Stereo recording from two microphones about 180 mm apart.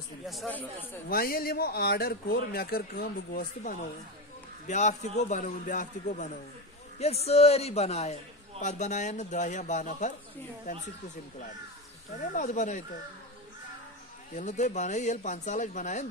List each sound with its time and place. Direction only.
0.3 s speech: 5° left (ahead or behind)
1.0 s a man's voice: 55° left (ahead or behind)
12.2 s a man's voice: 45° left (ahead or behind)
14.3 s a man's voice: 40° left (ahead or behind)